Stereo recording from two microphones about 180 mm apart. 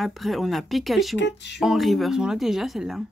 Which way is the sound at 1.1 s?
75° left (ahead or behind).